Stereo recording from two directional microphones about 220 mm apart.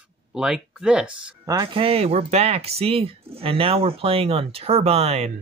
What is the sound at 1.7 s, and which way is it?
Speech, 25° right (ahead or behind).